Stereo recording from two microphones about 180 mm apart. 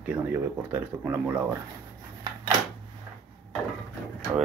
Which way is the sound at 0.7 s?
10° right (ahead or behind).